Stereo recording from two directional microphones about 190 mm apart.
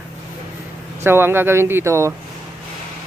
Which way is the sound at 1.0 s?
10° right (ahead or behind).